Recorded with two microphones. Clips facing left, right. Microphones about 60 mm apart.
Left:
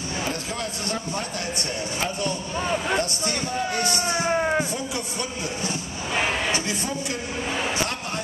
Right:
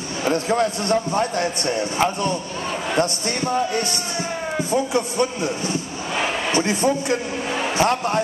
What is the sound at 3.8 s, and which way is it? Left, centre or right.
Speech, left.